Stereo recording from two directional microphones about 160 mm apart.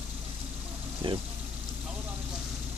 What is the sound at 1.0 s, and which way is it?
Speech, 30° right (ahead or behind).